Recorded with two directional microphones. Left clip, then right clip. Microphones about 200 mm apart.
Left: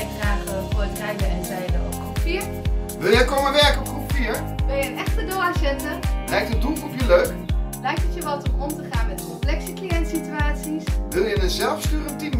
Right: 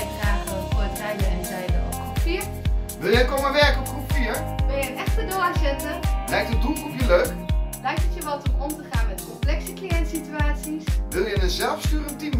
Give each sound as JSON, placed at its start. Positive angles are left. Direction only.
{"t": 1.1, "sound": "music", "side_deg": 0}
{"t": 3.0, "sound": "speech", "side_deg": 5}
{"t": 4.1, "sound": "music", "side_deg": 0}
{"t": 6.3, "sound": "speech", "side_deg": 0}
{"t": 9.8, "sound": "speech", "side_deg": 0}